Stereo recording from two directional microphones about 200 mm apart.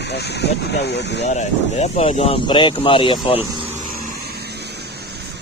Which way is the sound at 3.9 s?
50° right (ahead or behind).